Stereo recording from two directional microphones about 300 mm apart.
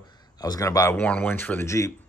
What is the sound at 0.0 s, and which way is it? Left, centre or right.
Speech, centre.